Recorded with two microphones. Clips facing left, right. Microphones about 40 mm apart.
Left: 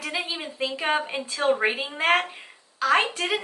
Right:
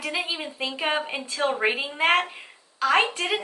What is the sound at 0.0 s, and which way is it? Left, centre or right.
A woman's voice, centre.